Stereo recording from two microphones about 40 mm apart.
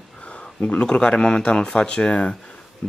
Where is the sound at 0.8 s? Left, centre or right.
Left.